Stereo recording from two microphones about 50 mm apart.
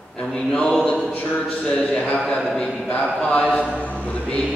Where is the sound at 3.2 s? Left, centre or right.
Left.